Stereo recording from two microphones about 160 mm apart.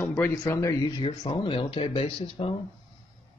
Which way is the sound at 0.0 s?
15° left (ahead or behind).